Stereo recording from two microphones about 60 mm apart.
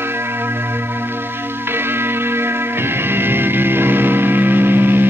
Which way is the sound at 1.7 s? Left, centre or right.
Right.